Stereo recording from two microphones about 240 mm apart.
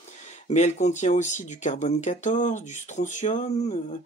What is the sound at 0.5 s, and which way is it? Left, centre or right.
Speech, left.